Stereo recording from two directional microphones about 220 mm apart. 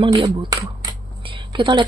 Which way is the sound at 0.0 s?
20° right (ahead or behind).